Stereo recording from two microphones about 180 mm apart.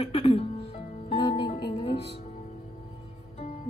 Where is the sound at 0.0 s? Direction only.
35° left (ahead or behind).